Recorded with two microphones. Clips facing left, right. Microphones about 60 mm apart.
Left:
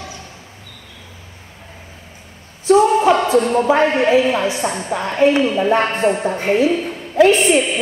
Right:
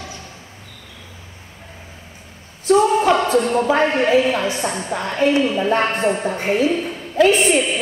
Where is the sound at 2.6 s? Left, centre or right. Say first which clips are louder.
Left 2 dB; left.